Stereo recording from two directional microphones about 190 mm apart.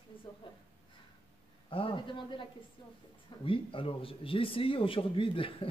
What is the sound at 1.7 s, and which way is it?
Speech, 30° left (ahead or behind).